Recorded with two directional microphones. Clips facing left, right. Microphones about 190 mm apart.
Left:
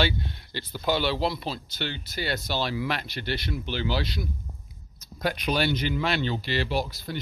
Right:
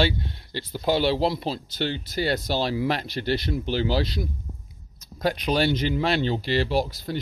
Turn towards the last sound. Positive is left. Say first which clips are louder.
# right 4 dB
turn(degrees=-35)  # may be behind; listen again after turning